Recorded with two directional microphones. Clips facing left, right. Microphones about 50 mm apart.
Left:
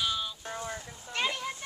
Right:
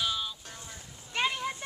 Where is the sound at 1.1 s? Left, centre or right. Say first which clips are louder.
Right 2 dB; centre.